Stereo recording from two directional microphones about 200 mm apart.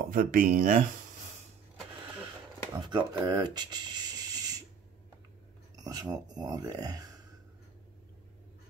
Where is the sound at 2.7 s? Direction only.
20° right (ahead or behind).